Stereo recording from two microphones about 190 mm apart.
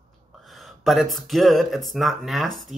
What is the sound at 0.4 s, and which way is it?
Speech, centre (ahead or behind).